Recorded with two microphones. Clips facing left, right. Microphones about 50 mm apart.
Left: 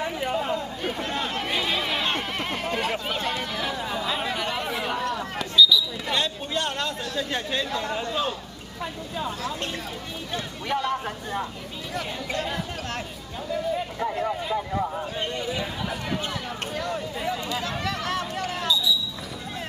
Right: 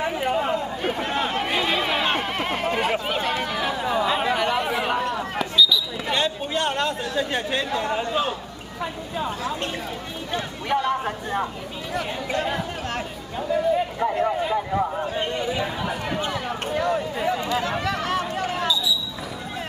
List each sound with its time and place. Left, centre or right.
0.0 s chatter: centre
5.4 s speech: centre
17.6 s a sound: right